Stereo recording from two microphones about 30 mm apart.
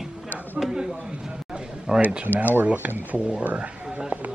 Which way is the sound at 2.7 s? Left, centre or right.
Right.